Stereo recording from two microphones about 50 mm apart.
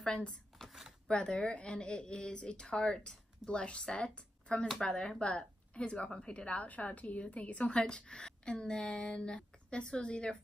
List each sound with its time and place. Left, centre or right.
0.0 s a woman's voice: centre